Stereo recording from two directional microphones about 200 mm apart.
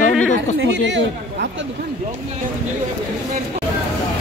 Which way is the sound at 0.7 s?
65° right (ahead or behind).